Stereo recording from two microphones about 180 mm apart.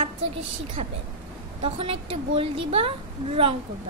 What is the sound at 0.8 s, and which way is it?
A woman's voice, 35° right (ahead or behind).